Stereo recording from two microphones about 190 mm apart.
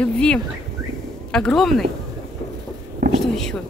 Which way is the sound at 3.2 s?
Centre (ahead or behind).